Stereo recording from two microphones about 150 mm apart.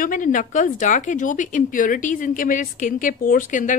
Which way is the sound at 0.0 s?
60° left (ahead or behind).